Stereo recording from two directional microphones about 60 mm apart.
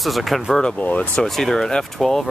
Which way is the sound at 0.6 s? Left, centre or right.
Left.